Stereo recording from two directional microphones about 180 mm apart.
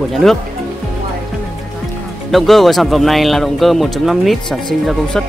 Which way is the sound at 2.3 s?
Centre (ahead or behind).